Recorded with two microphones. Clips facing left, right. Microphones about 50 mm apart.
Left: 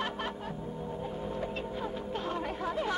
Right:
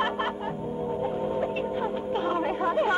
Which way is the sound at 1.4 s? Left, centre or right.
Right.